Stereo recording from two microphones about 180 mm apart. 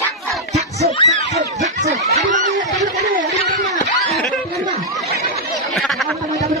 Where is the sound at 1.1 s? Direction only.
40° right (ahead or behind).